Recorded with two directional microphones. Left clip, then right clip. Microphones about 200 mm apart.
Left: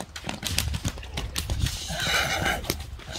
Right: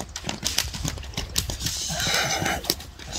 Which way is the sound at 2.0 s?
5° left (ahead or behind).